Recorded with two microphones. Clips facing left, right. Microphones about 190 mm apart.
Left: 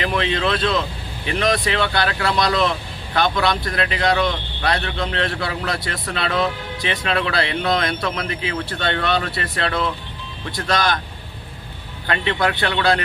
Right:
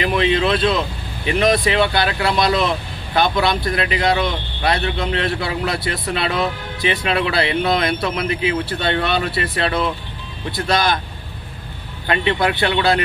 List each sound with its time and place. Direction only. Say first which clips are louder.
0.0 s speech: right 4 dB; 15° right (ahead or behind)
12.1 s speech: right 2 dB; 15° right (ahead or behind)